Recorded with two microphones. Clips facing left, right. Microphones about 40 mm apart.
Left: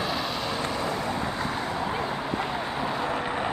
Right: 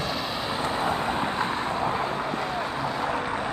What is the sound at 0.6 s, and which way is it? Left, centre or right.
Vehicle, right.